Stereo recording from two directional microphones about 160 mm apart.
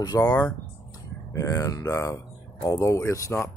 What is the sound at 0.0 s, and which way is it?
Speech, 25° left (ahead or behind).